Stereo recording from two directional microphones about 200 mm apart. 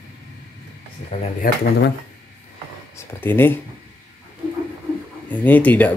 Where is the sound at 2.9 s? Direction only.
10° left (ahead or behind).